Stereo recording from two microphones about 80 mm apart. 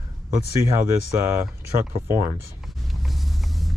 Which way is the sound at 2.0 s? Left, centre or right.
Right.